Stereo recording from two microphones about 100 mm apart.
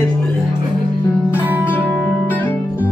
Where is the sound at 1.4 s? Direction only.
15° right (ahead or behind).